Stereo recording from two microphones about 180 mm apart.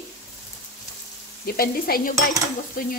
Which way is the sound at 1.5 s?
55° left (ahead or behind).